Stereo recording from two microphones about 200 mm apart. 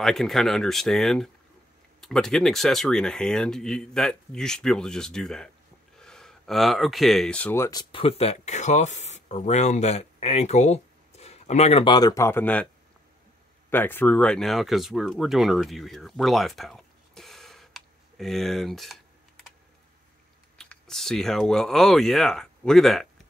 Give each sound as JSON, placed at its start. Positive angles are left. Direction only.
{"t": 0.0, "sound": "speech", "side_deg": 0}
{"t": 7.9, "sound": "speech", "side_deg": 30}
{"t": 13.7, "sound": "speech", "side_deg": 10}
{"t": 20.5, "sound": "speech", "side_deg": 0}